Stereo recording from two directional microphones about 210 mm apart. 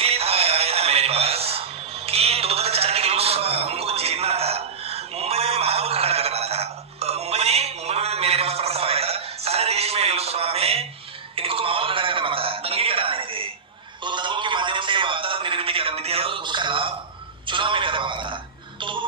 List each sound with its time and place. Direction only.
0.0 s music: 30° right (ahead or behind)
11.3 s a sound: 25° right (ahead or behind)
17.5 s music: 25° right (ahead or behind)